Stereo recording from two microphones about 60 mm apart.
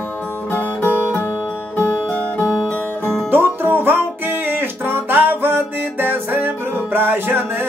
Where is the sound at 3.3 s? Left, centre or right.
Right.